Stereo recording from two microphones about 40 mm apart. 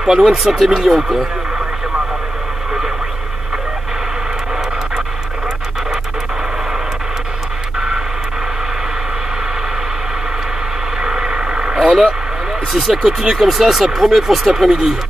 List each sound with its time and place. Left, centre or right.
0.0 s speech: centre
0.3 s speech: centre
11.0 s a sound: centre
11.7 s vehicle: centre
12.7 s speech: centre